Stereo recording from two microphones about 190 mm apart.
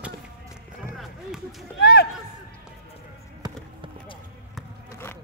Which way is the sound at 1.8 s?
60° left (ahead or behind).